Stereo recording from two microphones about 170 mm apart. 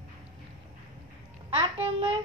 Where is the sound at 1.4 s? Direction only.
30° right (ahead or behind).